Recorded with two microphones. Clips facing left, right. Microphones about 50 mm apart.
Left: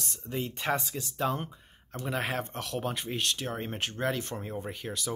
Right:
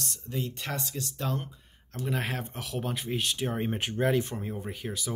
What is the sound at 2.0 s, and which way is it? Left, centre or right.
A man's voice, centre.